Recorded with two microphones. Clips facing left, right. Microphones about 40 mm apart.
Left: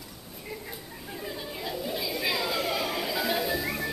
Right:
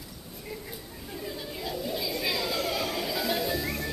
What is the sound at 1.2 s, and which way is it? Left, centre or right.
Chatter, centre.